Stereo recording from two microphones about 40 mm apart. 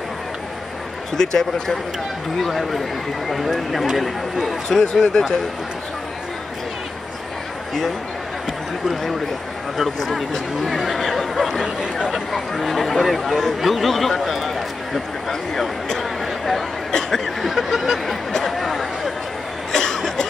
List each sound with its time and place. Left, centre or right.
1.1 s speech: centre
2.4 s speech: centre
4.6 s speech: centre
10.0 s speech: centre
11.6 s speech: centre
12.1 s speech: centre
16.0 s a sound: centre
16.9 s speech: centre
18.4 s a sound: centre
19.7 s cough: centre